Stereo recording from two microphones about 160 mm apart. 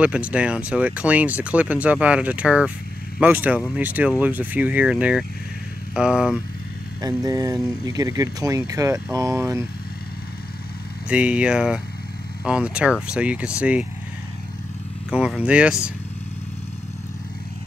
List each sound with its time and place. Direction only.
0.0 s speech: 5° right (ahead or behind)
7.2 s speech: 20° right (ahead or behind)
11.1 s speech: 5° right (ahead or behind)
15.1 s speech: 5° right (ahead or behind)